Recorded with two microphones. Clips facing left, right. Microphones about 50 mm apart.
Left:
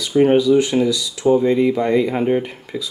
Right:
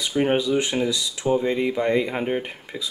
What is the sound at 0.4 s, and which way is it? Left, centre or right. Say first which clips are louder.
Speech: left 7 dB; right.